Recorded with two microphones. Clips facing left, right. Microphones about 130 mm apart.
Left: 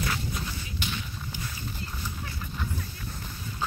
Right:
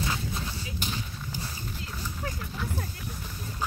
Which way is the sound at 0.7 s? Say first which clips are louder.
Left 1 dB; 40° right (ahead or behind).